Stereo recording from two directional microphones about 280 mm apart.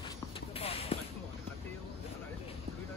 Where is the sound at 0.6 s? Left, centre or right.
Left.